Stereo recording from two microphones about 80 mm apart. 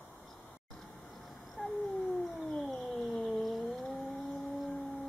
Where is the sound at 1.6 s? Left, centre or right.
Centre.